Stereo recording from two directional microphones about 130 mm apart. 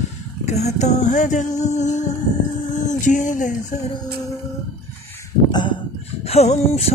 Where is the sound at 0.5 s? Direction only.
60° left (ahead or behind); by 3.5 s 75° left (ahead or behind).